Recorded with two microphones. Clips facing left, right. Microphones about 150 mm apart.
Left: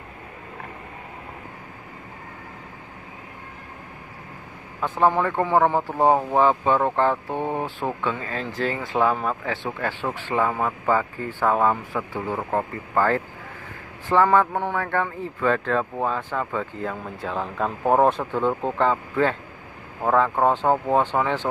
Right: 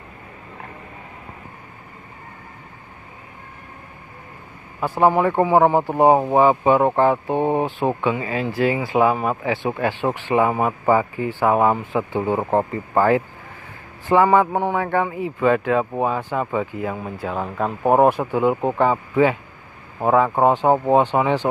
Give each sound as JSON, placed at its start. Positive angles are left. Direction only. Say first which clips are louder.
{"t": 4.7, "sound": "speech", "louder": "right 3 dB", "side_deg": -10}